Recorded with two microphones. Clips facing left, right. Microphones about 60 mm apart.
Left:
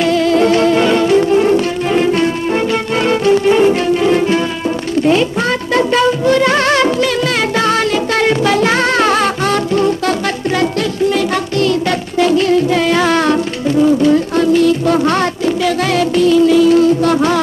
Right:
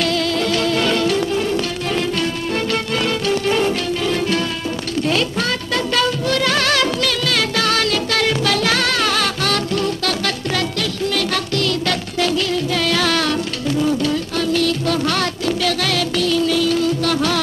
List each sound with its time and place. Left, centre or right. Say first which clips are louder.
0.0 s music: left 8 dB; left